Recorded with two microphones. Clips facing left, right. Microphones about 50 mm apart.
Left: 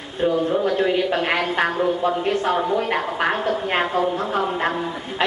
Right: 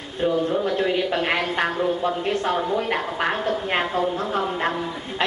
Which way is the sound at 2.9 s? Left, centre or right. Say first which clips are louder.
Left 2 dB; centre.